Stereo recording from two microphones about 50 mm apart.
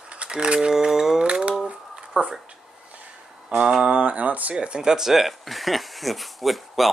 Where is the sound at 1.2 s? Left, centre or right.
Right.